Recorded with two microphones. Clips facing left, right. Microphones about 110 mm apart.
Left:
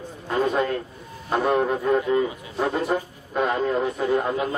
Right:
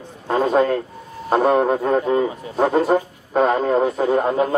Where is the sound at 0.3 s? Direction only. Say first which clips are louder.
Right 6 dB; 35° right (ahead or behind).